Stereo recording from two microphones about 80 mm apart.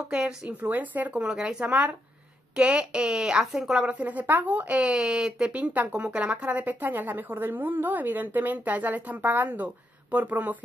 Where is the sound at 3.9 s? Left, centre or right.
Centre.